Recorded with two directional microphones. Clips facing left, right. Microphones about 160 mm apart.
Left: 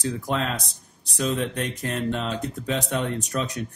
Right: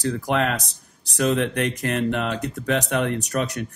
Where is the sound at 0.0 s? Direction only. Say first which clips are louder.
Right 4 dB; 75° right (ahead or behind).